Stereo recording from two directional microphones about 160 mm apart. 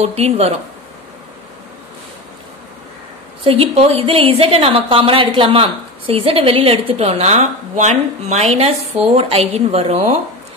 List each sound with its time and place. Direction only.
0.0 s a woman's voice: 40° right (ahead or behind)
3.4 s a woman's voice: 35° right (ahead or behind)